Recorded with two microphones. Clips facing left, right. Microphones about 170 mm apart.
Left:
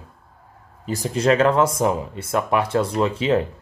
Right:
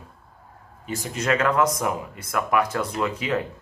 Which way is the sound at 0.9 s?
35° left (ahead or behind).